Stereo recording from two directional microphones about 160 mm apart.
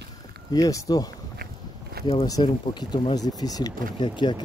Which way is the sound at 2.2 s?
25° left (ahead or behind).